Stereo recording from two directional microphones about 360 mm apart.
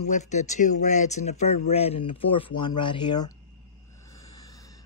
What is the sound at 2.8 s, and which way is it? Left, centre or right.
Speech, centre.